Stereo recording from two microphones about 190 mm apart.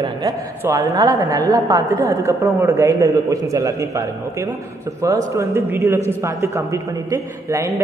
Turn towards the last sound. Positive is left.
turn(degrees=-15)  # may be behind; listen again after turning